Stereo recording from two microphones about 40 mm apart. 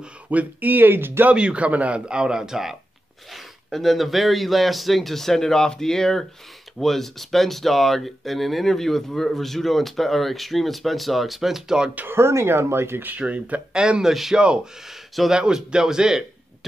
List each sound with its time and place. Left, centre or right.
0.3 s speech: right
1.3 s a man's voice: right
2.0 s a man's voice: right
3.7 s speech: centre
12.1 s speech: right
13.2 s a man's voice: right